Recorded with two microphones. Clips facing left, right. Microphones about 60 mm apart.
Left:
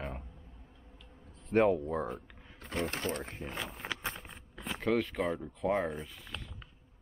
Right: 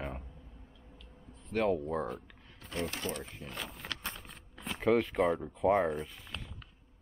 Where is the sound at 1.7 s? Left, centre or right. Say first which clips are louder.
Left 1 dB; centre.